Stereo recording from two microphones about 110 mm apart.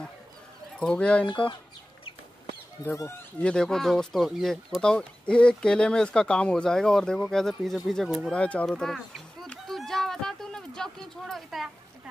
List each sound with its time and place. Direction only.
0.7 s speech: 10° left (ahead or behind)
2.8 s speech: 25° left (ahead or behind)
3.4 s speech: 5° left (ahead or behind)
8.6 s a sound: 5° left (ahead or behind)